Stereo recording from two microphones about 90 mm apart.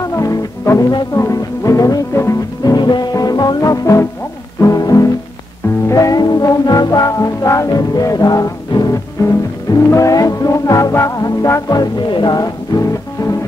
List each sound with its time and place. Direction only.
0.0 s music: 40° left (ahead or behind)
2.7 s music: 50° left (ahead or behind); by 11.6 s 35° left (ahead or behind)
12.1 s music: 55° left (ahead or behind)
12.7 s music: 45° left (ahead or behind)